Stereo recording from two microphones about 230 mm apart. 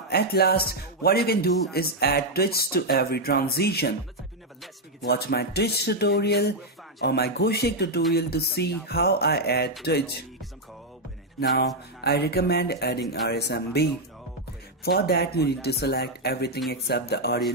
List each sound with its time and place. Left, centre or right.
0.1 s speech: left
5.0 s speech: left
11.3 s speech: left
14.9 s speech: left